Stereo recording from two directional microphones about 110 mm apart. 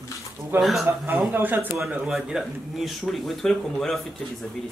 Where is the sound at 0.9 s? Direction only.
15° right (ahead or behind); by 4.0 s 5° left (ahead or behind).